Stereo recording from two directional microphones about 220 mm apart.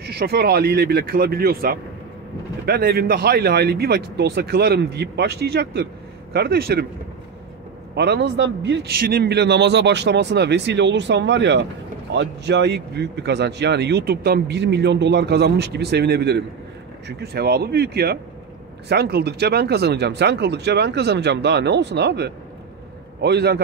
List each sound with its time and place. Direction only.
0.0 s speech: 45° right (ahead or behind)
7.9 s speech: 50° right (ahead or behind)